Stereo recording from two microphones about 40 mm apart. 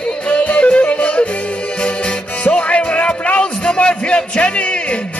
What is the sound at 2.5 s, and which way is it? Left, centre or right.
Music, left.